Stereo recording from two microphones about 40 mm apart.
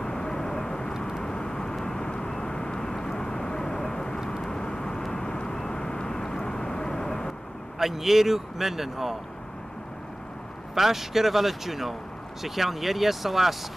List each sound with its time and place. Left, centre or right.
0.0 s vehicle: centre
7.8 s speech: centre
10.7 s speech: centre